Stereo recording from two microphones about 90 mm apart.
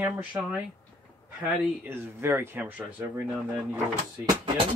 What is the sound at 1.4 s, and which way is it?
Speech, 25° right (ahead or behind).